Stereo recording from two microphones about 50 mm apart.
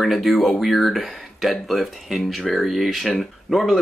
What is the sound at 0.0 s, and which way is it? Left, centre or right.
Speech, centre.